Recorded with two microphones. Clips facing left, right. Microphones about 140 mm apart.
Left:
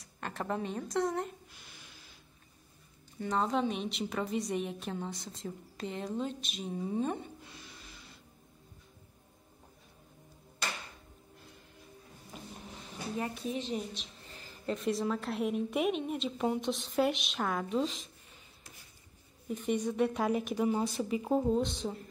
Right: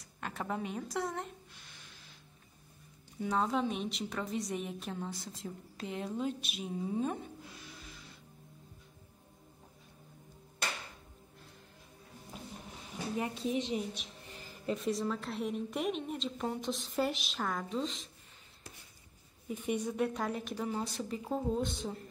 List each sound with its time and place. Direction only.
0.2 s a woman's voice: 5° right (ahead or behind)
3.2 s a woman's voice: 5° right (ahead or behind)
13.2 s a woman's voice: 25° right (ahead or behind)
14.7 s a woman's voice: centre (ahead or behind)
19.5 s a woman's voice: 5° right (ahead or behind); by 21.5 s 15° left (ahead or behind)
21.5 s a woman's voice: centre (ahead or behind)